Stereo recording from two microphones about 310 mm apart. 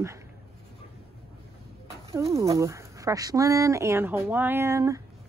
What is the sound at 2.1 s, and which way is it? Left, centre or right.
Speech, centre.